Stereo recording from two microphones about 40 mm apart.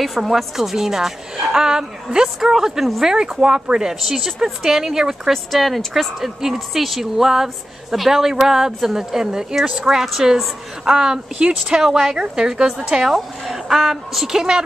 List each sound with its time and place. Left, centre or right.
0.0 s speech: centre
3.2 s speech: right
5.3 s speech: centre
11.3 s speech: right
11.8 s speech: centre